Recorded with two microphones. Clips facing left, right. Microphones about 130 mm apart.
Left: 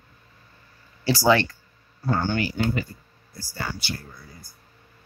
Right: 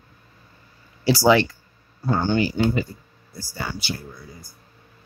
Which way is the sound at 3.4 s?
15° right (ahead or behind).